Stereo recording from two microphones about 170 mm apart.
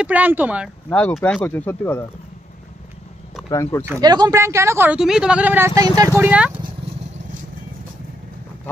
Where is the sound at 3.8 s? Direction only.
20° right (ahead or behind).